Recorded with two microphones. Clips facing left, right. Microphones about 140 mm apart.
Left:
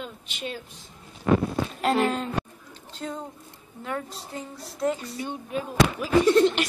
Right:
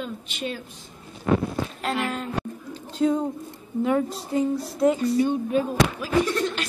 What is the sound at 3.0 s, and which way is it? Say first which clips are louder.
A woman's voice: right 12 dB; 5° right (ahead or behind).